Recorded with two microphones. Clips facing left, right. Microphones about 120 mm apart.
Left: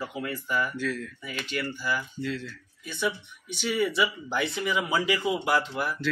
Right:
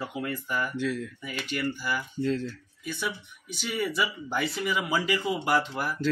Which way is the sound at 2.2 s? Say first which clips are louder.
Right 5 dB; 40° right (ahead or behind).